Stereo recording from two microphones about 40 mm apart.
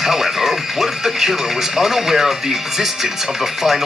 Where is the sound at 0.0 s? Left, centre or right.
Centre.